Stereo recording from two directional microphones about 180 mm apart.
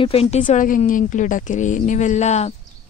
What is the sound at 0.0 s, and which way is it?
A woman's voice, 35° left (ahead or behind).